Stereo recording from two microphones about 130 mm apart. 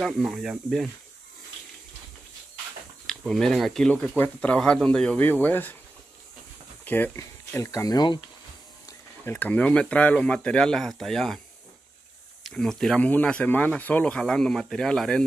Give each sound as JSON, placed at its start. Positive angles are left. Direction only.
{"t": 0.0, "sound": "speech", "side_deg": -5}
{"t": 3.1, "sound": "speech", "side_deg": 5}
{"t": 6.8, "sound": "speech", "side_deg": 15}
{"t": 9.2, "sound": "speech", "side_deg": 15}
{"t": 12.4, "sound": "speech", "side_deg": 5}